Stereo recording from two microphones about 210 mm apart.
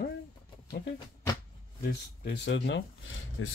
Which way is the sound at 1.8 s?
50° left (ahead or behind).